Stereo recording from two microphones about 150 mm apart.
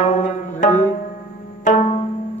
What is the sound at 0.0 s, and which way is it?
Music, 55° left (ahead or behind).